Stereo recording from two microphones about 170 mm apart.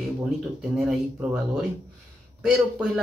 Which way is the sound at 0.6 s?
5° right (ahead or behind).